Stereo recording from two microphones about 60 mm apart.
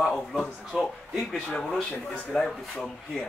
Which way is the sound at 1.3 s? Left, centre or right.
Centre.